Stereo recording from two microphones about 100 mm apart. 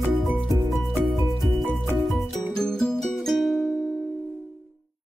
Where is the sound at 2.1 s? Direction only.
5° left (ahead or behind).